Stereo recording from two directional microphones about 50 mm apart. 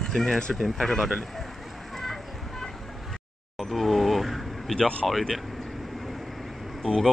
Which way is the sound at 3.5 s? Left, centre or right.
Centre.